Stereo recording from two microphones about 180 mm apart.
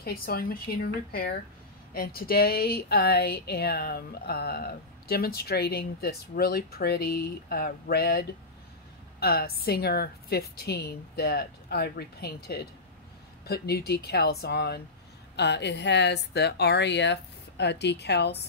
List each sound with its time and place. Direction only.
0.0 s a woman's voice: 55° left (ahead or behind)